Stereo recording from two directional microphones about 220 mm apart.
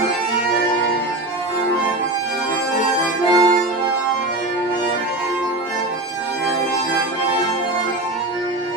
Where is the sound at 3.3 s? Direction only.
15° right (ahead or behind).